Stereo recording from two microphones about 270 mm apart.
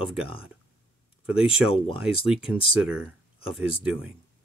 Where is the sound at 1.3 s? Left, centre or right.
Centre.